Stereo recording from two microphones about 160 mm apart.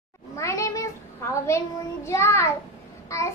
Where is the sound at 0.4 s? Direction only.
20° left (ahead or behind).